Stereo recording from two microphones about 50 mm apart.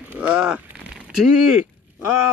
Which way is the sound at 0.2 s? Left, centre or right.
Centre.